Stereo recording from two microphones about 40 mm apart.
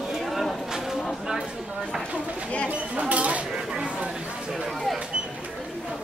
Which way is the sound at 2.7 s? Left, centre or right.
Right.